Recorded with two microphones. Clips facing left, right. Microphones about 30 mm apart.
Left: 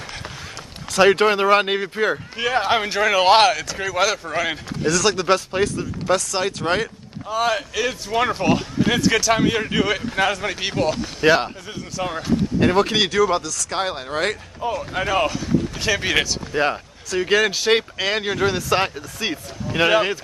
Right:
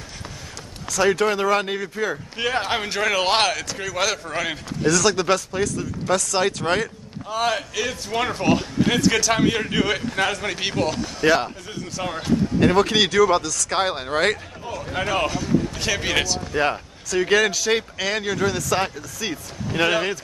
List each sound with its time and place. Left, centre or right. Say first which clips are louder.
0.8 s speech: left 4 dB; left
2.3 s speech: left 2 dB; centre
5.5 s speech: left 3 dB; left
6.0 s speech: even; centre
11.1 s speech: left 2 dB; left
12.0 s speech: left 1 dB; centre
13.7 s speech: right 2 dB; centre
14.9 s speech: even; centre
17.6 s speech: left 3 dB; left
17.9 s speech: left 2 dB; left
19.8 s speech: left 3 dB; centre